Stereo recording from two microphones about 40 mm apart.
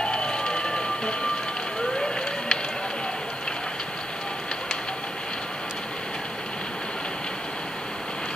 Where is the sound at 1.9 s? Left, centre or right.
Centre.